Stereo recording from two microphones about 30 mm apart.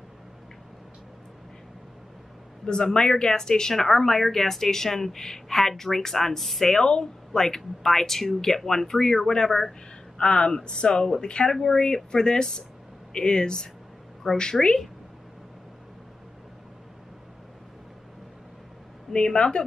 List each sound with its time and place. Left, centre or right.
2.6 s speech: left; by 6.8 s centre
6.8 s speech: left
7.3 s speech: centre
9.5 s speech: centre
10.1 s speech: left
11.4 s speech: centre
19.3 s speech: left